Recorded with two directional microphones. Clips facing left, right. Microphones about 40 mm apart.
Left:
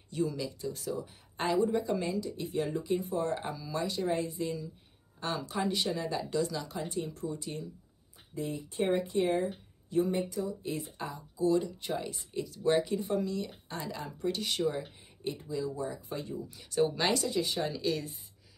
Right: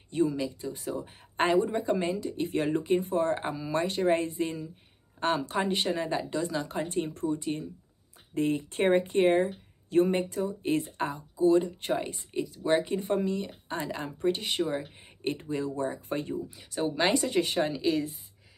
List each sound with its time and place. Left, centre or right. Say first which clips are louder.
0.1 s speech: right 5 dB; right
1.0 s speech: right 10 dB; right
8.4 s speech: right 6 dB; right
11.3 s speech: right 5 dB; right
12.4 s speech: right 1 dB; centre
12.8 s speech: right 3 dB; right
15.2 s speech: right 4 dB; right
16.4 s speech: left 2 dB; centre
17.0 s speech: right 4 dB; centre
17.3 s speech: right 5 dB; right
17.6 s speech: right 4 dB; right